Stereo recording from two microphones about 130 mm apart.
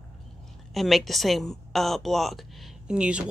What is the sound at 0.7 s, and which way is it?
A woman's voice, centre (ahead or behind).